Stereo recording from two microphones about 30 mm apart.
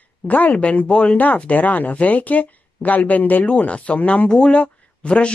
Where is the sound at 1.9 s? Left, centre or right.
Left.